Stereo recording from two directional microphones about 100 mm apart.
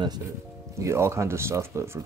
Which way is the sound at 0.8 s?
25° right (ahead or behind).